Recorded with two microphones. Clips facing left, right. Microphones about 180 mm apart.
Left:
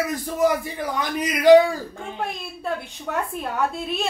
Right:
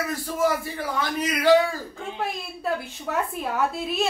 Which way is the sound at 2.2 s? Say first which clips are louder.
Even; centre (ahead or behind).